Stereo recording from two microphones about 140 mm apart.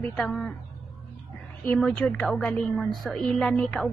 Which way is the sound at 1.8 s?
5° left (ahead or behind).